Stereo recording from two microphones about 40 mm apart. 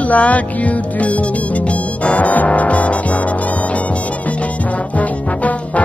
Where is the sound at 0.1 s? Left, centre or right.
Left.